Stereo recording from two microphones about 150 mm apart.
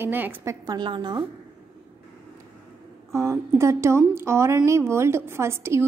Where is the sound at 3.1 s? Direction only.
20° right (ahead or behind).